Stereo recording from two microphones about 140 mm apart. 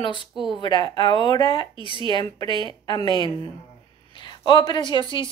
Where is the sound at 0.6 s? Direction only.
35° left (ahead or behind).